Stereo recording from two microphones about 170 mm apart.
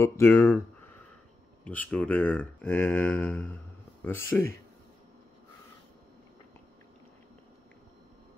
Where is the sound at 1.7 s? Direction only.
10° left (ahead or behind).